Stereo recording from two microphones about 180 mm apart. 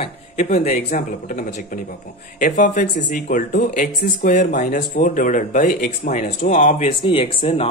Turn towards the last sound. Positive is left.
turn(degrees=30)  # may be behind; listen again after turning